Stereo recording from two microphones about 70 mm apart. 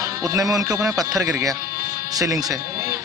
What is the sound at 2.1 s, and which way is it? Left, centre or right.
Speech, right.